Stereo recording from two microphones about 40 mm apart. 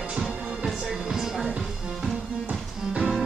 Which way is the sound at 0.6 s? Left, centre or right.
Centre.